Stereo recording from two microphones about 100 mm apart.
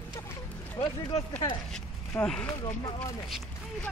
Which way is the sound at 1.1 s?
60° left (ahead or behind).